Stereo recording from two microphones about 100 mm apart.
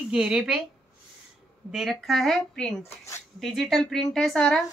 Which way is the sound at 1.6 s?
Centre (ahead or behind).